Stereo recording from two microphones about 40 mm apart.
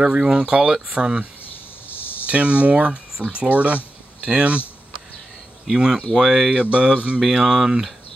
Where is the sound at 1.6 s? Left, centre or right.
Left.